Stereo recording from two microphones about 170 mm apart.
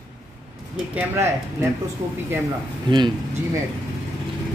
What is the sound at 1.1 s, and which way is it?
Speech, 15° right (ahead or behind).